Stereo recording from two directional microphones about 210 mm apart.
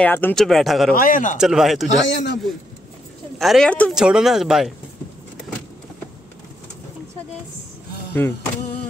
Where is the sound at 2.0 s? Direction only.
55° left (ahead or behind).